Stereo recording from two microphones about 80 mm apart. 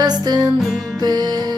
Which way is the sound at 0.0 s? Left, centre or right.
Right.